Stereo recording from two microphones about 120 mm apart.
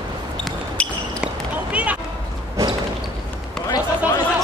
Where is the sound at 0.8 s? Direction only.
10° left (ahead or behind).